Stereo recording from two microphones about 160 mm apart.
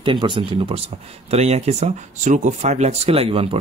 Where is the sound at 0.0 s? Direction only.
30° right (ahead or behind).